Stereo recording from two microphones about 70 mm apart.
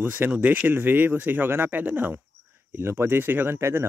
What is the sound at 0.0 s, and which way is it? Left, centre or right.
Speech, right.